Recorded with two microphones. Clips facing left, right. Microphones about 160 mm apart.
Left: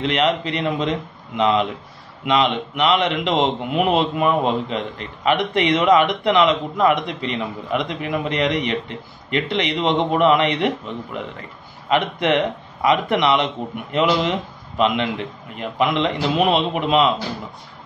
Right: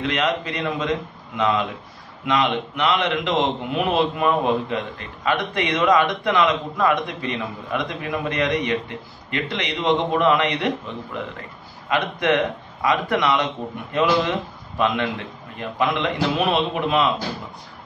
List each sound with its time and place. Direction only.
0.0 s a man's voice: 25° left (ahead or behind)
11.9 s a man's voice: 20° left (ahead or behind)
15.5 s a man's voice: 20° left (ahead or behind)